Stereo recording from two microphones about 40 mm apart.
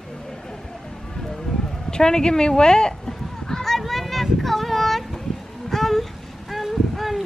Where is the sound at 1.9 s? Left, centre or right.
Centre.